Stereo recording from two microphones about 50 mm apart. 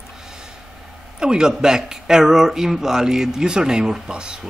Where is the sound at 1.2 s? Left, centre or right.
Centre.